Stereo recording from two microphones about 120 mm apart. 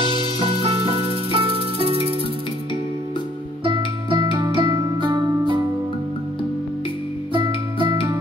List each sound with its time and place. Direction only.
0.0 s music: 50° right (ahead or behind)
3.6 s music: 45° right (ahead or behind)
7.3 s music: 40° right (ahead or behind)